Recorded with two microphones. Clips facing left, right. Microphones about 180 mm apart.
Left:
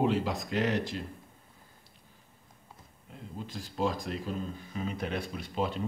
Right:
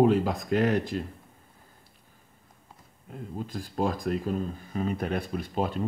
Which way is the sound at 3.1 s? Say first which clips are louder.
Right 6 dB; 50° right (ahead or behind).